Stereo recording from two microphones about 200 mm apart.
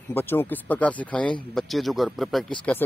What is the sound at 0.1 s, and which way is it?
A man's voice, 10° left (ahead or behind).